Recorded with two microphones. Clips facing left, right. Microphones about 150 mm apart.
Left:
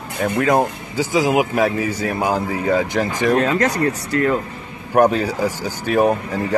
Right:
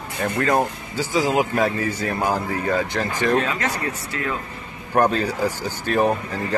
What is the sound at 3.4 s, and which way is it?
Speech, 40° left (ahead or behind).